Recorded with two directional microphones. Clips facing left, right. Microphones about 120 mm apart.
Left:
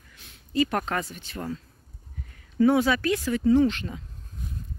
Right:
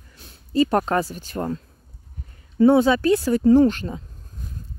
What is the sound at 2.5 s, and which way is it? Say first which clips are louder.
Speech: right 5 dB; 30° right (ahead or behind).